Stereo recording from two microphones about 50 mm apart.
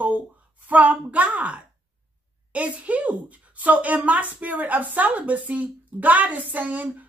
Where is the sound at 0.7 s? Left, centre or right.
Right.